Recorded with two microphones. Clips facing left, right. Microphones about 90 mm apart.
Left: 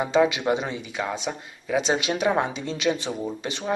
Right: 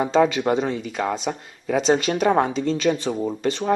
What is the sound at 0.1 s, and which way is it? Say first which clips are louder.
Speech: right 1 dB; 40° right (ahead or behind).